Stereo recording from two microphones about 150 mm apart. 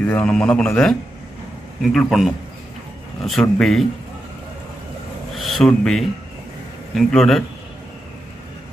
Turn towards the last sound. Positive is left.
turn(degrees=0)  # may be behind; listen again after turning